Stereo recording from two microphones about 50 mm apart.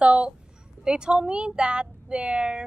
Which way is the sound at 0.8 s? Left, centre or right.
Centre.